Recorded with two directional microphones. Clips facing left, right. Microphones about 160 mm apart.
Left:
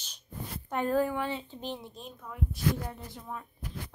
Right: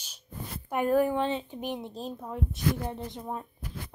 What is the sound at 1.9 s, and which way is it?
Speech, 35° right (ahead or behind).